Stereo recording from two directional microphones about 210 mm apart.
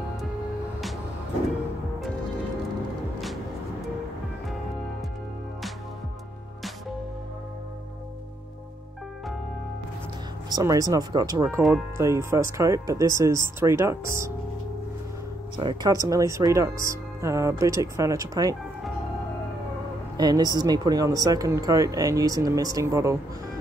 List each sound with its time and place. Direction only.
10.5 s speech: 15° right (ahead or behind)
15.5 s speech: 20° right (ahead or behind)
20.2 s speech: 20° right (ahead or behind)